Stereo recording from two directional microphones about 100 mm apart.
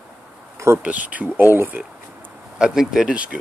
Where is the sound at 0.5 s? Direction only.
30° right (ahead or behind).